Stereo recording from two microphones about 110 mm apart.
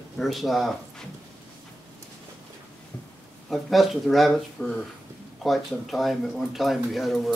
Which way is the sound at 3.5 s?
Centre (ahead or behind).